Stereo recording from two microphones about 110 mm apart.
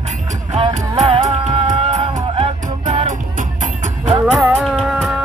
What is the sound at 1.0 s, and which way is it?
Music, 60° right (ahead or behind).